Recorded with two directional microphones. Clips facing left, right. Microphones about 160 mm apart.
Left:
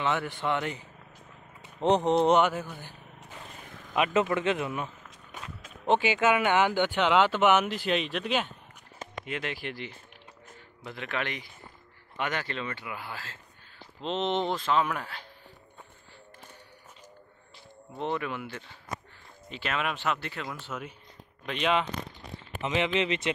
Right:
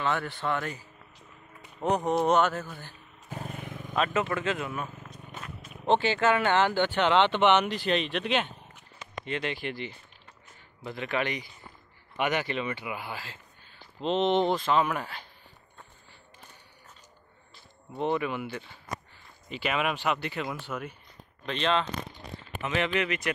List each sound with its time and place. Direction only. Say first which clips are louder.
0.0 s speech: left 1 dB; 15° left (ahead or behind)
3.3 s vehicle: right 9 dB; 45° right (ahead or behind)
3.9 s speech: left 2 dB; 20° left (ahead or behind)
5.9 s speech: even; 10° left (ahead or behind)
12.2 s speech: right 4 dB; 15° right (ahead or behind)
17.9 s speech: right 3 dB; 5° right (ahead or behind)
21.5 s speech: even; 10° left (ahead or behind); by 23.3 s 25° left (ahead or behind)